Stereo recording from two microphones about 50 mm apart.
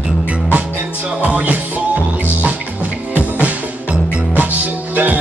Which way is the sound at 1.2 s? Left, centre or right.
Right.